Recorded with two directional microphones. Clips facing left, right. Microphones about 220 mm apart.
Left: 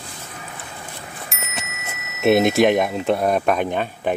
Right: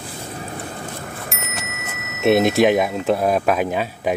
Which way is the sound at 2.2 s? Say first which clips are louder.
Even; centre (ahead or behind).